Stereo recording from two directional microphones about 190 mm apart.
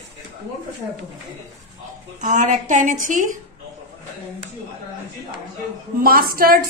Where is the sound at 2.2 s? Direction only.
45° right (ahead or behind).